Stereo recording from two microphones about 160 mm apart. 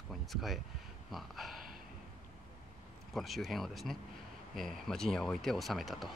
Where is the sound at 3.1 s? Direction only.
Centre (ahead or behind).